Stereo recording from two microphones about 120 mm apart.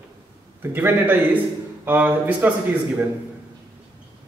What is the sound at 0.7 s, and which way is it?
A man's voice, 15° right (ahead or behind).